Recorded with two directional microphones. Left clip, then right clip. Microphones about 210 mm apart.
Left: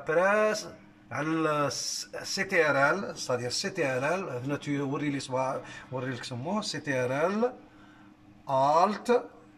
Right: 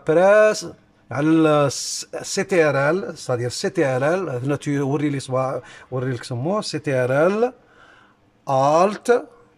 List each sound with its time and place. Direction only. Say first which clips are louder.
0.0 s speech: right 11 dB; 45° right (ahead or behind)
8.5 s speech: right 7 dB; 45° right (ahead or behind)